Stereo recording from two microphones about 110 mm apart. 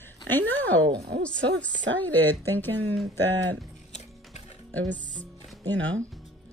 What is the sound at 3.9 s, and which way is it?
Music, 90° left.